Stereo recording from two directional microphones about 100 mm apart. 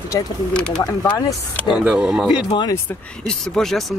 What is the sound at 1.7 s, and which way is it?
Speech, 10° right (ahead or behind).